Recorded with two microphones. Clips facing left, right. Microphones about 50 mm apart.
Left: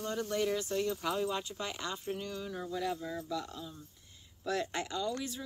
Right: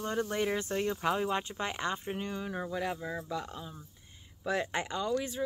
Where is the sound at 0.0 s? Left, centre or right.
Right.